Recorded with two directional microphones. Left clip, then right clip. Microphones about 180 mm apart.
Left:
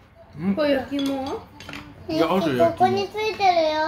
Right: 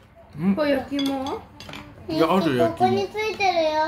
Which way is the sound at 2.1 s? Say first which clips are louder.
Even; 25° right (ahead or behind).